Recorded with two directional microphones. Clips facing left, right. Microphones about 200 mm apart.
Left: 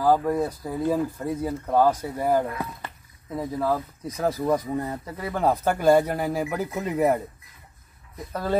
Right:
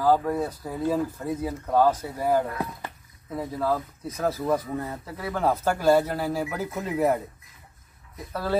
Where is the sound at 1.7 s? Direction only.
15° left (ahead or behind).